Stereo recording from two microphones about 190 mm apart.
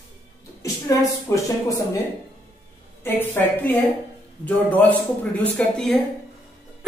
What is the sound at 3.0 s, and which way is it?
A woman's voice, 10° left (ahead or behind).